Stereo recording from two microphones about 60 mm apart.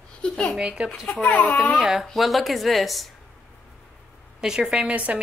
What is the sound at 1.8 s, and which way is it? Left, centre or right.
A woman's voice, centre.